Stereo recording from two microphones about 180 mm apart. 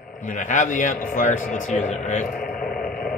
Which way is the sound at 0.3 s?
45° left (ahead or behind).